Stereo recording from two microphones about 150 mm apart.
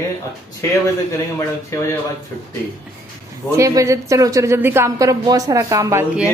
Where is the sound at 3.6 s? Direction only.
20° right (ahead or behind).